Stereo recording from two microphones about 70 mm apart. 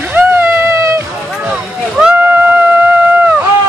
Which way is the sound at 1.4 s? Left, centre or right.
Centre.